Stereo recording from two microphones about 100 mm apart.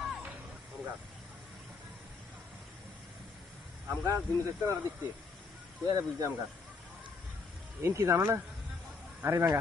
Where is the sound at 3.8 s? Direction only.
30° right (ahead or behind).